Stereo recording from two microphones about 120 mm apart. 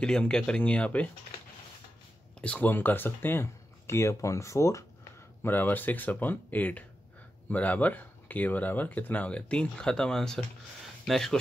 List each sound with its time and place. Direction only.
0.0 s speech: 5° left (ahead or behind)
2.4 s speech: 10° left (ahead or behind)